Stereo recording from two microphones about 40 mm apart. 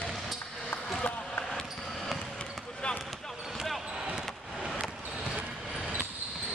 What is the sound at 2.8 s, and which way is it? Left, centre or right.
Basketball bounce, left.